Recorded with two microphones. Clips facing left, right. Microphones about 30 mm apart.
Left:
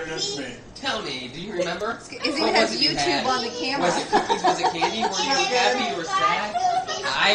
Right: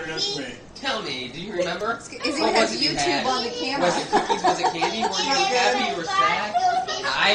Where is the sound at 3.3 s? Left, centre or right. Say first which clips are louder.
Even; right.